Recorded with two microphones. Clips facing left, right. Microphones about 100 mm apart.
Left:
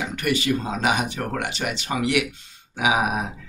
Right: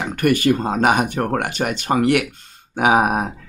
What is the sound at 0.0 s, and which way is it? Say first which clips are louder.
Speech: right 7 dB; 50° right (ahead or behind).